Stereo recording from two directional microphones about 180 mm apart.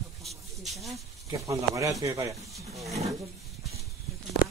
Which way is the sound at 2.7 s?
Centre (ahead or behind).